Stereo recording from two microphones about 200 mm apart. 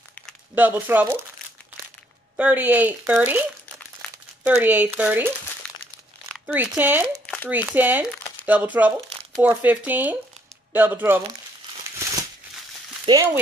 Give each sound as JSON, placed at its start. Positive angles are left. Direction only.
{"t": 0.6, "sound": "speech", "side_deg": -10}
{"t": 2.3, "sound": "speech", "side_deg": -10}
{"t": 4.5, "sound": "speech", "side_deg": -10}
{"t": 13.0, "sound": "speech", "side_deg": -15}